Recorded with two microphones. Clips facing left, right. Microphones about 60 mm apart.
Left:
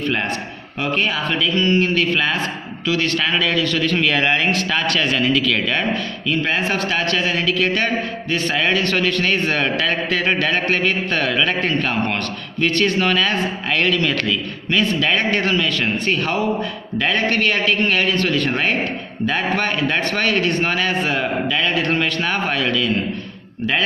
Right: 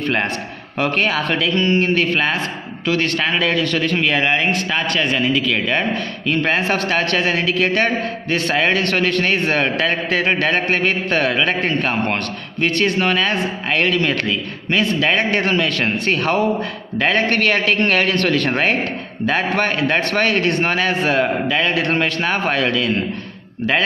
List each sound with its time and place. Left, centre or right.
0.0 s a man's voice: right
0.7 s speech: right
1.6 s a man's voice: right
4.0 s speech: centre
6.2 s a man's voice: right
18.5 s a man's voice: right